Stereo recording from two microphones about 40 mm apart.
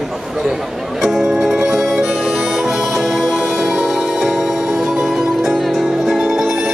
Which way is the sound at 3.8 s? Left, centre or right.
Centre.